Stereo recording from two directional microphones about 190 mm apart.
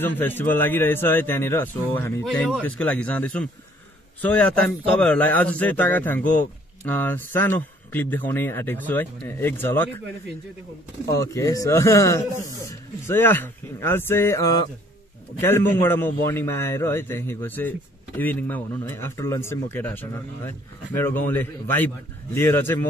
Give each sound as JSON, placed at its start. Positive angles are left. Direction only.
{"t": 0.0, "sound": "a man's voice", "side_deg": 10}
{"t": 11.1, "sound": "a man's voice", "side_deg": 15}